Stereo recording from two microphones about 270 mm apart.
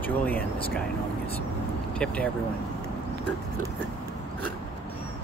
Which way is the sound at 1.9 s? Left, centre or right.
Centre.